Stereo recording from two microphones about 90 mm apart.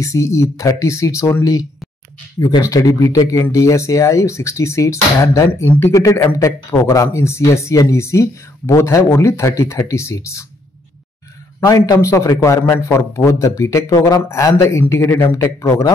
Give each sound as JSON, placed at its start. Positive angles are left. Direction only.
{"t": 0.0, "sound": "speech", "side_deg": 35}
{"t": 5.7, "sound": "speech", "side_deg": 25}
{"t": 5.9, "sound": "speech", "side_deg": 40}
{"t": 11.6, "sound": "speech", "side_deg": 40}